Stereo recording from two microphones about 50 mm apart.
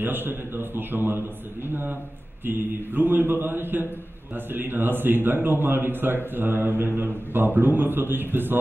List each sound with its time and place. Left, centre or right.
0.0 s speech: right